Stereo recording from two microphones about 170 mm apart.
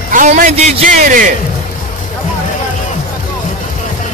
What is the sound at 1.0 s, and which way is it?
Speech, 50° right (ahead or behind).